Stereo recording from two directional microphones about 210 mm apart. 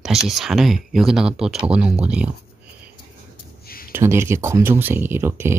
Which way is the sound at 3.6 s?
45° left (ahead or behind).